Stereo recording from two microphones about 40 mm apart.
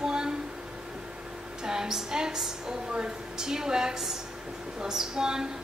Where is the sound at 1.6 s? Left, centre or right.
Centre.